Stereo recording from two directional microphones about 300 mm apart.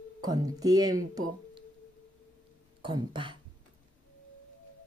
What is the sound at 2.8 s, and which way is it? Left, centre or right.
Speech, centre.